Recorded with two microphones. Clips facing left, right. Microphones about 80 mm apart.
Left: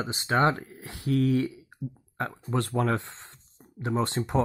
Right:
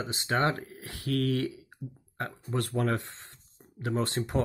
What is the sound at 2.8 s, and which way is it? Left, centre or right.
Speech, left.